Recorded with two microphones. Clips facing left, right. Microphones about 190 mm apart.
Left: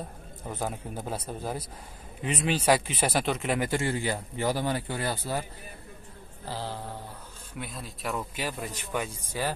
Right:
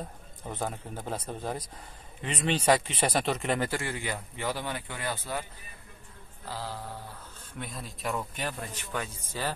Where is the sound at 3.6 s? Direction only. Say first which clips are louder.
Left 4 dB; 20° left (ahead or behind).